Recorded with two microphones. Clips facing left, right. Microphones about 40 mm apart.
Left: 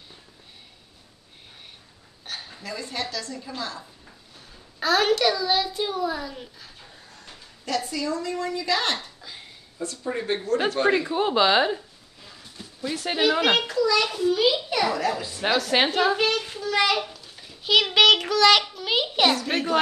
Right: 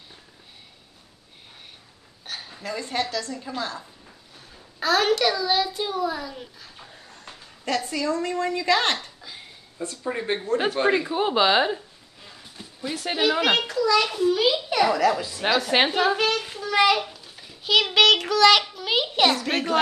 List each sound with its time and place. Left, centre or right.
2.2 s dishes: centre
2.6 s a woman's voice: right
4.7 s a child's voice: centre
7.6 s a woman's voice: right
10.0 s speech: centre
10.6 s a sound: centre
12.9 s a child's voice: centre
15.8 s a sound: centre
19.4 s a woman's voice: right